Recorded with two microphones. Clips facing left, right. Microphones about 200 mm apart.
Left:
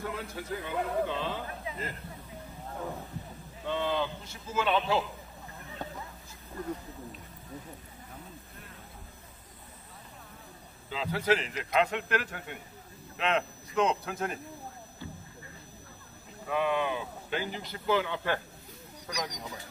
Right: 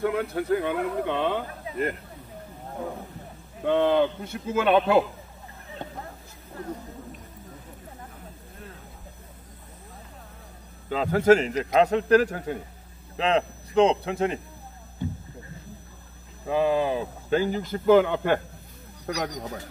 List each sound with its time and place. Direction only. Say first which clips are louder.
0.0 s speech: right 11 dB; 60° right (ahead or behind)
3.6 s speech: right 10 dB; 60° right (ahead or behind)
5.8 s a sound: right 1 dB; 20° right (ahead or behind)
10.9 s a man's voice: right 10 dB; 50° right (ahead or behind); by 14.3 s 30° right (ahead or behind)
16.4 s speech: right 6 dB; 30° right (ahead or behind); by 19.6 s 60° right (ahead or behind)